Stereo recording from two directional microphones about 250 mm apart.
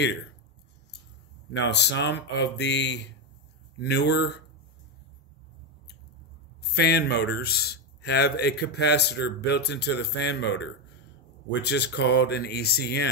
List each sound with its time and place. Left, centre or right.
1.5 s speech: left
6.7 s a man's voice: left